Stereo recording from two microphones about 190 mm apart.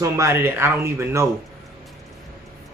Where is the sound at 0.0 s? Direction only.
15° right (ahead or behind).